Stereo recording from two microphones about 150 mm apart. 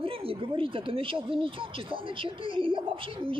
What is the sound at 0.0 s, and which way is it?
Speech, 35° right (ahead or behind).